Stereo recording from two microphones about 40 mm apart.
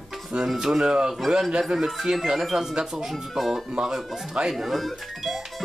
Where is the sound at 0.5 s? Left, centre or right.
Centre.